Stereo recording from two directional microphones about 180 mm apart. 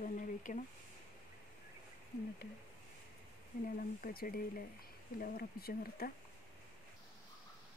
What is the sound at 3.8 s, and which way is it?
Speech, 50° left (ahead or behind).